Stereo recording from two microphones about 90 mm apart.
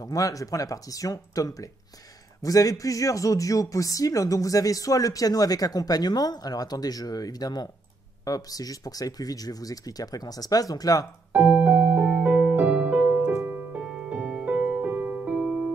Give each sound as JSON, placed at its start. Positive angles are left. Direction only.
{"t": 0.0, "sound": "speech", "side_deg": 40}
{"t": 11.3, "sound": "music", "side_deg": -15}